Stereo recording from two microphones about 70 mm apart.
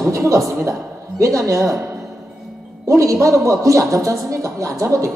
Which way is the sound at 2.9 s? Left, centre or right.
Right.